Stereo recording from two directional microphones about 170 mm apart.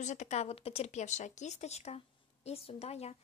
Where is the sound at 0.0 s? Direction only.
45° left (ahead or behind).